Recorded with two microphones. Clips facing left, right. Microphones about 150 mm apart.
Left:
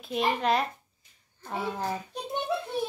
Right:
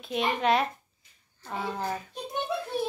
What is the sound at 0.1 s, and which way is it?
Speech, centre (ahead or behind).